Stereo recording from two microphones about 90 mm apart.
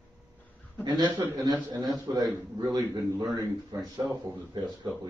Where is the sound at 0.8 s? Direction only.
55° right (ahead or behind).